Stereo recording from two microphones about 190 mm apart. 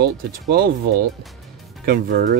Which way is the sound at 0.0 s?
55° right (ahead or behind).